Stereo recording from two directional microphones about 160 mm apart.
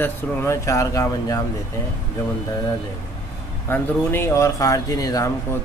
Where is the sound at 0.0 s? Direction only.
15° left (ahead or behind).